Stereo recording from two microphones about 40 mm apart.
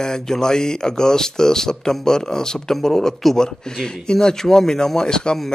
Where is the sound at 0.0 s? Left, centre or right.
Centre.